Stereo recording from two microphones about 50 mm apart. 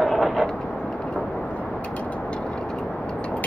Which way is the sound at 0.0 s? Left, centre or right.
Centre.